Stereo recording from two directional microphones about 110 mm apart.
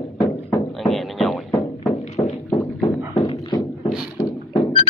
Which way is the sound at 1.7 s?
90° left.